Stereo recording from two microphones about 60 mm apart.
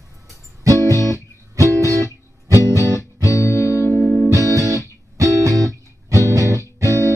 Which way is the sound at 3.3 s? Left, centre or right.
Left.